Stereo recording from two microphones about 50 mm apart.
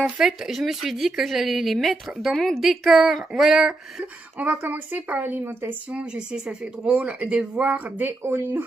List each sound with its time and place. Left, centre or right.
0.2 s a woman's voice: centre
4.6 s speech: right
5.9 s speech: right
8.2 s speech: right